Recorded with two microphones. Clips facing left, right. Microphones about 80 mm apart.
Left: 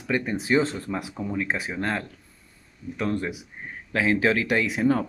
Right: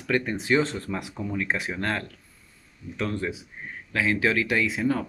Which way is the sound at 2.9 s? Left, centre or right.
Left.